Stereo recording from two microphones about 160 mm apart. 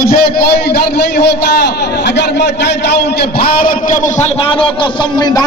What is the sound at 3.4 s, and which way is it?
Speech, 65° left (ahead or behind).